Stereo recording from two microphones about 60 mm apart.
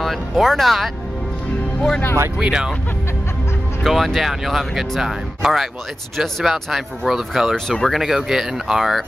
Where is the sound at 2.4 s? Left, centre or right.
Centre.